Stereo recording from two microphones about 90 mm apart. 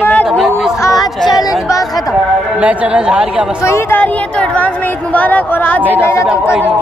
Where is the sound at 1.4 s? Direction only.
40° left (ahead or behind).